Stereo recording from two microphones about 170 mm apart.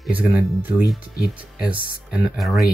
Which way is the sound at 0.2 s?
10° right (ahead or behind).